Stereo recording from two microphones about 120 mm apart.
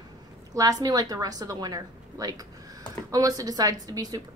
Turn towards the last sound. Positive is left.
turn(degrees=-30)  # may be behind; listen again after turning